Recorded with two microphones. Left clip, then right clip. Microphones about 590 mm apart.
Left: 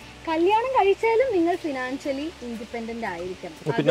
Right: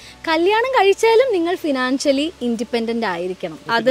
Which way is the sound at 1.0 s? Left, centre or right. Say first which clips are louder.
Right 6 dB; right.